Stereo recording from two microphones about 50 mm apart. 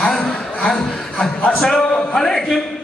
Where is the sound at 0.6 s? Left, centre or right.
Centre.